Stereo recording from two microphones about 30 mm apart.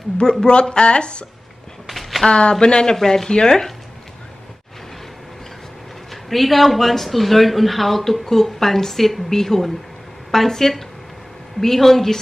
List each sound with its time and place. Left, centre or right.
0.2 s speech: left
0.5 s speech: left
1.9 s a sound: centre
2.2 s speech: left
6.2 s speech: centre